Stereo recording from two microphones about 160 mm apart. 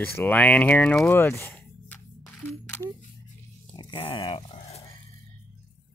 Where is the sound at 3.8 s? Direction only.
30° left (ahead or behind).